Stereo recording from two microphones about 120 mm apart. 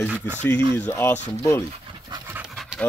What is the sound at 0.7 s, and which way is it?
Speech, 15° left (ahead or behind).